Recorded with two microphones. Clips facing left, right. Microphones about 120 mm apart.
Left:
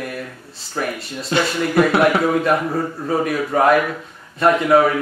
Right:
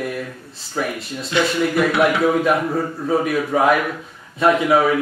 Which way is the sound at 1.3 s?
40° left (ahead or behind).